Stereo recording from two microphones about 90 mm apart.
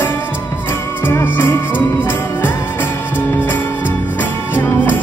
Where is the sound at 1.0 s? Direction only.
25° left (ahead or behind).